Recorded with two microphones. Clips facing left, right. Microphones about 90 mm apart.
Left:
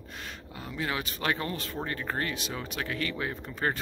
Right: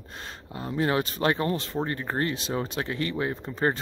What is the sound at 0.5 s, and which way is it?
Speech, 35° right (ahead or behind).